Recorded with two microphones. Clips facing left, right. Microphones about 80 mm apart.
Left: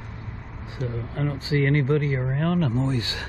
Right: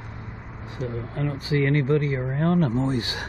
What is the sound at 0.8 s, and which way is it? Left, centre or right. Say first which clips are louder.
Speech: even; centre.